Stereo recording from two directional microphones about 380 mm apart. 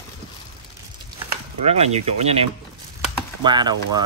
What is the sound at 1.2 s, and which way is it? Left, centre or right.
Speech, centre.